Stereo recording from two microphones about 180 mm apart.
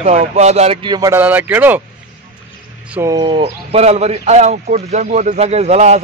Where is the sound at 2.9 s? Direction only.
20° right (ahead or behind).